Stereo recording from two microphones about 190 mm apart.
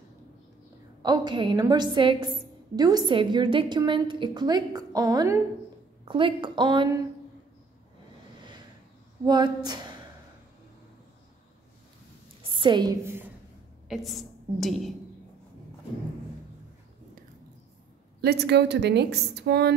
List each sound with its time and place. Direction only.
1.0 s a woman's voice: 20° right (ahead or behind)
9.2 s a woman's voice: 20° right (ahead or behind)
12.5 s a woman's voice: 25° right (ahead or behind)
13.0 s a sound: 10° right (ahead or behind)
13.8 s a woman's voice: centre (ahead or behind)
18.2 s a woman's voice: 60° right (ahead or behind)